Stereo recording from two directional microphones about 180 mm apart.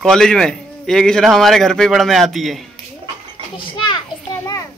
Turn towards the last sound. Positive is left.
turn(degrees=20)  # may be behind; listen again after turning